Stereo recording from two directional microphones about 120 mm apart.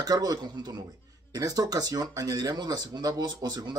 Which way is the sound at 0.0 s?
30° right (ahead or behind).